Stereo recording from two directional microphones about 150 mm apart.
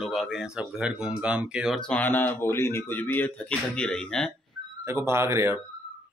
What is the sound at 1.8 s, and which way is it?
Speech, 10° left (ahead or behind).